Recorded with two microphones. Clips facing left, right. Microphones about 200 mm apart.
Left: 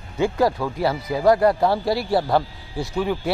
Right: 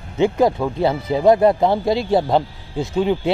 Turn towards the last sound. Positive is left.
turn(degrees=-20)  # may be behind; listen again after turning